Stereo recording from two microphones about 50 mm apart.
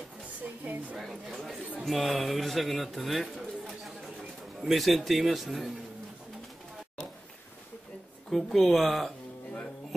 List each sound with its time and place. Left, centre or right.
0.4 s a sound: right
1.0 s a man's voice: centre
8.3 s a man's voice: centre